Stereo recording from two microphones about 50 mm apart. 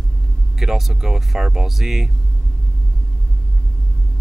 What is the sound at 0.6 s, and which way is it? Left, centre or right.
Speech, centre.